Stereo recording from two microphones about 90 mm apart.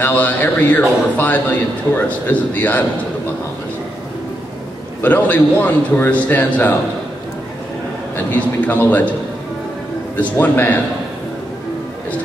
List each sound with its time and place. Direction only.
0.0 s a man's voice: 20° left (ahead or behind)
5.0 s a man's voice: 20° left (ahead or behind)
8.3 s speech: 20° left (ahead or behind)
10.1 s a man's voice: 20° left (ahead or behind)